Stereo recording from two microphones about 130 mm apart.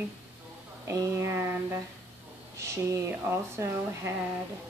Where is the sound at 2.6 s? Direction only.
20° right (ahead or behind).